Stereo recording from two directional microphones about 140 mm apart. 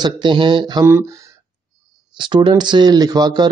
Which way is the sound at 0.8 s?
20° right (ahead or behind).